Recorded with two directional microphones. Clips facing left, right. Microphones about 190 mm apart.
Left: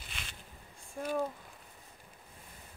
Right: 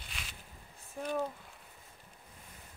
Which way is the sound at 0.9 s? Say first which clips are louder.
Left 1 dB; 10° left (ahead or behind).